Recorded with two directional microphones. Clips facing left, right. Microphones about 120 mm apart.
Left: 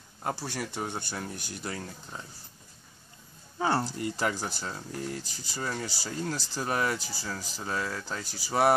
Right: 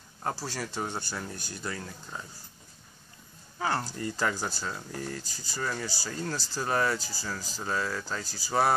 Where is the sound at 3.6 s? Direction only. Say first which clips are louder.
Left 3 dB; 25° left (ahead or behind).